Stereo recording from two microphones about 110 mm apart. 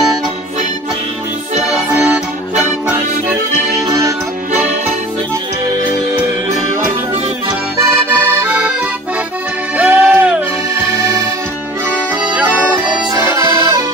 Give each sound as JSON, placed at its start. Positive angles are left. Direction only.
{"t": 2.0, "sound": "accordion", "side_deg": -10}
{"t": 7.8, "sound": "accordion", "side_deg": -20}
{"t": 9.8, "sound": "music", "side_deg": -15}
{"t": 13.4, "sound": "accordion", "side_deg": -30}